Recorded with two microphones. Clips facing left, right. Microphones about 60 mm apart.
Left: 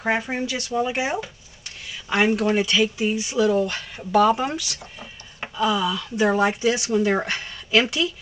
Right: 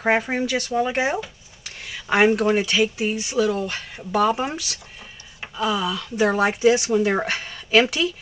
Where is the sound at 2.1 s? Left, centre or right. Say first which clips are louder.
Right 3 dB; centre.